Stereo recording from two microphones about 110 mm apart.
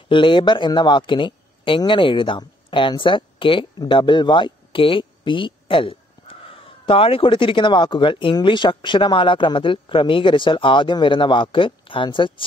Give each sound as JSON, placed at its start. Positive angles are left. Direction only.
{"t": 0.1, "sound": "speech", "side_deg": 50}